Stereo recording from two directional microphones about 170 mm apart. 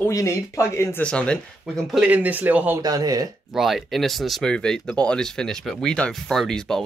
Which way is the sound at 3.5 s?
Centre (ahead or behind).